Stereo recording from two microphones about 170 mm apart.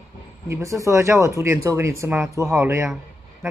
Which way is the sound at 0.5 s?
20° right (ahead or behind).